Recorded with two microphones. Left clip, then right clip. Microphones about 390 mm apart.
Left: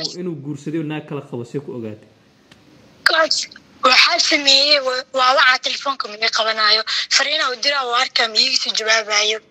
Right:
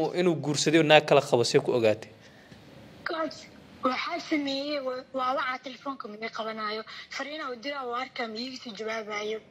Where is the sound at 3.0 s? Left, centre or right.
Centre.